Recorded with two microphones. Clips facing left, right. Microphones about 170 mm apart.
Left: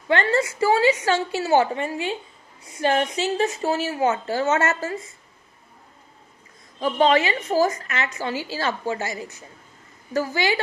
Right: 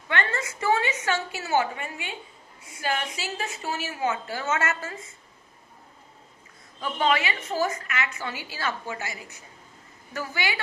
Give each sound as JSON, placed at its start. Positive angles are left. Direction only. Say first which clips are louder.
{"t": 0.2, "sound": "a woman's voice", "louder": "left 8 dB", "side_deg": 35}
{"t": 6.8, "sound": "a woman's voice", "louder": "left 6 dB", "side_deg": 40}